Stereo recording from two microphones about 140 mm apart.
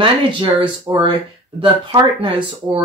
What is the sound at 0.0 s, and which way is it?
Speech, 35° right (ahead or behind).